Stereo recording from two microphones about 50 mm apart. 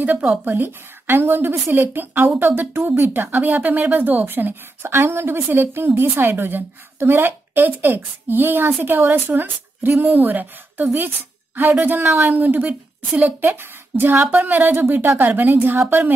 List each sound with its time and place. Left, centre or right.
0.0 s a woman's voice: right